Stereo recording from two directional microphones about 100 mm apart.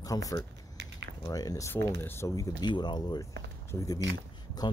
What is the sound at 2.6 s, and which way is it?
Speech, 45° left (ahead or behind).